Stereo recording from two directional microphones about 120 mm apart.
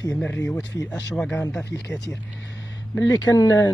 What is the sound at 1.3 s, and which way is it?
Speech, 20° left (ahead or behind).